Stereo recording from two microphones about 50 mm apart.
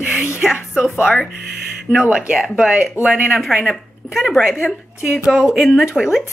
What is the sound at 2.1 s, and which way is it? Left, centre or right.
Speech, centre.